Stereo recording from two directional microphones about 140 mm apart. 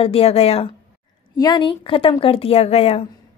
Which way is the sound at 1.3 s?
30° left (ahead or behind).